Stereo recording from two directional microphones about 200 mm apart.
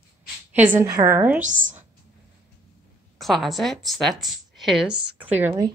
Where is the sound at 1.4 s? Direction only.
40° right (ahead or behind).